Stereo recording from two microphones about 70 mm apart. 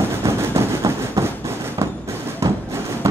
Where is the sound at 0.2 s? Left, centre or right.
Right.